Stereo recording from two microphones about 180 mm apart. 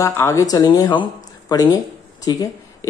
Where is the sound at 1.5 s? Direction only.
20° left (ahead or behind).